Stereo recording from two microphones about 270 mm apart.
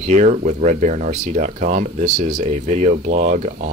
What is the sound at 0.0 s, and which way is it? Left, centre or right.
Speech, right.